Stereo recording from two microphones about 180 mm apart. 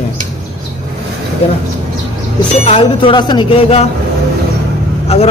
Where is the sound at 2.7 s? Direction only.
30° left (ahead or behind).